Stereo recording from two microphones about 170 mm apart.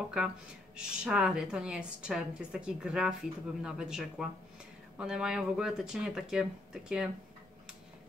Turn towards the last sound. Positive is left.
turn(degrees=-5)  # may be behind; listen again after turning